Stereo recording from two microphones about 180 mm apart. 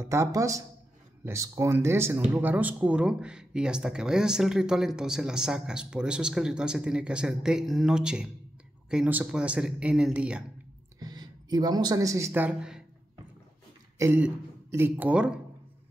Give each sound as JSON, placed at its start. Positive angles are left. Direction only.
{"t": 0.0, "sound": "speech", "side_deg": -15}
{"t": 11.0, "sound": "speech", "side_deg": -20}
{"t": 13.9, "sound": "speech", "side_deg": -10}